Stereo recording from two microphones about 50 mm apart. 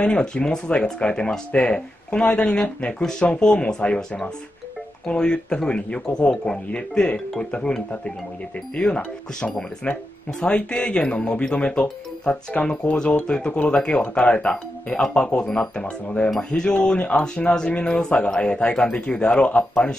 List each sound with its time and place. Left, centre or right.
0.0 s speech: centre
13.5 s speech: left
13.7 s speech: centre